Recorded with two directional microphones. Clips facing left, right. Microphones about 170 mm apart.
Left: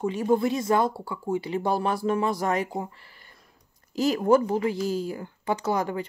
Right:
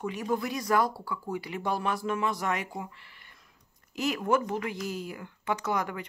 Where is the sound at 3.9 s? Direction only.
35° left (ahead or behind).